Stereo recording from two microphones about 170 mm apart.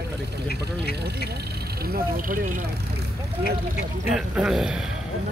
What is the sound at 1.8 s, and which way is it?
Speech, 60° right (ahead or behind).